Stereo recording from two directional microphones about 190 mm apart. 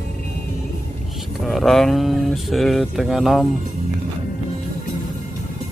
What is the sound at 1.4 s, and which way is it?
Speech, centre (ahead or behind).